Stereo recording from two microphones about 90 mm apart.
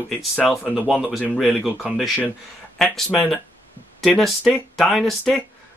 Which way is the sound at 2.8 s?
5° left (ahead or behind).